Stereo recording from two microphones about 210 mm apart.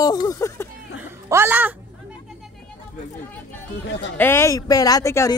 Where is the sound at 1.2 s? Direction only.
10° right (ahead or behind).